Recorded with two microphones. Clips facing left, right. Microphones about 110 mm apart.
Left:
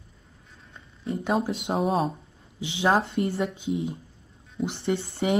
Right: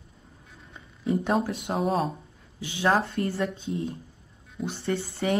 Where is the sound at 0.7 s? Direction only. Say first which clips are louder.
Right 5 dB; centre (ahead or behind).